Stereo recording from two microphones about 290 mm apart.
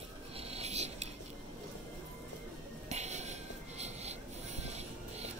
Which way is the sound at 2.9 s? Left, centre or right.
Right.